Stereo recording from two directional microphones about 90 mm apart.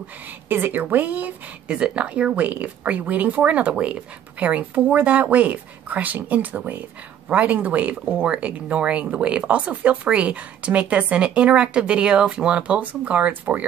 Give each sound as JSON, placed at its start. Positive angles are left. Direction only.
{"t": 0.5, "sound": "speech", "side_deg": -20}